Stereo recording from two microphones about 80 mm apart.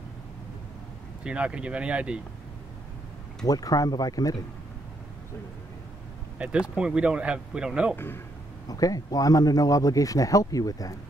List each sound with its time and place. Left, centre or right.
1.2 s speech: centre
3.4 s speech: left
6.3 s speech: centre
7.9 s speech: left
8.6 s speech: left